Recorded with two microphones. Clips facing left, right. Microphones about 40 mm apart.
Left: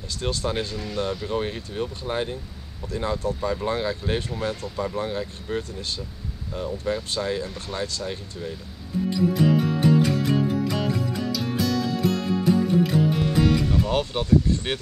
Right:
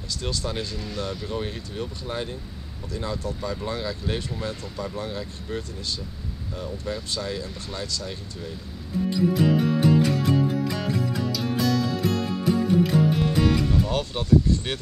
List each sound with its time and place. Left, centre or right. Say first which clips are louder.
0.2 s speech: left 4 dB; left
8.1 s speech: left 3 dB; centre
9.3 s music: even; centre
13.8 s speech: left 1 dB; left